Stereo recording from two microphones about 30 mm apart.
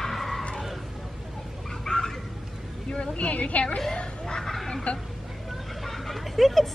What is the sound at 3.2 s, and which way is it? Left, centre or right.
Speech, left.